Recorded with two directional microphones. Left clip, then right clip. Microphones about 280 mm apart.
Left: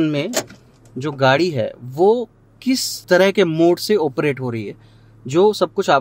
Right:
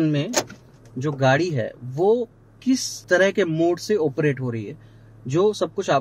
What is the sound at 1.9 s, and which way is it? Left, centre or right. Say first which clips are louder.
Speech: left 4 dB; left.